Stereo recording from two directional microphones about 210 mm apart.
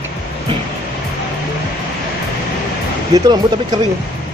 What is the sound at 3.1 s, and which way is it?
Speech, 20° right (ahead or behind).